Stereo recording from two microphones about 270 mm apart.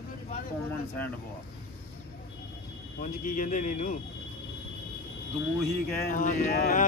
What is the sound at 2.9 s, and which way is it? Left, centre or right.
Speech, left.